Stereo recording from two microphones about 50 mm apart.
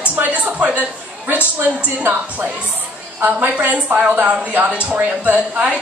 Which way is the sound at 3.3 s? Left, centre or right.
Right.